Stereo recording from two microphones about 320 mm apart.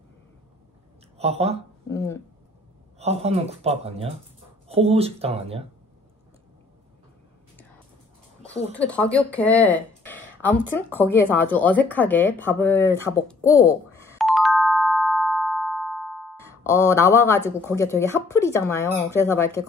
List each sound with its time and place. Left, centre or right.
1.1 s speech: centre
1.9 s speech: centre
3.0 s speech: centre
8.7 s speech: centre
14.0 s music: centre
17.4 s speech: centre
17.7 s speech: centre